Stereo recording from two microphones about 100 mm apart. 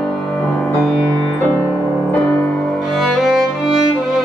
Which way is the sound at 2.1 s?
15° left (ahead or behind).